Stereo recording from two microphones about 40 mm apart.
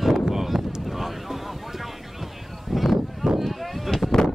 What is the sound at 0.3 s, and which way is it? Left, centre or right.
Wind noise, centre.